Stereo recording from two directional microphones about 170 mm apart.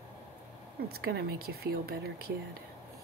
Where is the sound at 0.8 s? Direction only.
65° right (ahead or behind).